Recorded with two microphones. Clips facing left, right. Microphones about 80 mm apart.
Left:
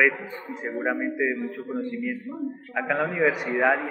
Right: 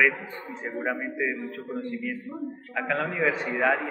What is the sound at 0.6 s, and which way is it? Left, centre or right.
A man's voice, centre.